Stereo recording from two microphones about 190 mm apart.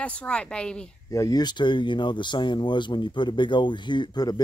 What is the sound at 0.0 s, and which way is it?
Speech, 5° left (ahead or behind).